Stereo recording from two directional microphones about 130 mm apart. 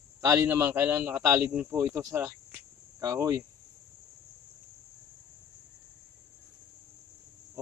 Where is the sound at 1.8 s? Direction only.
25° right (ahead or behind).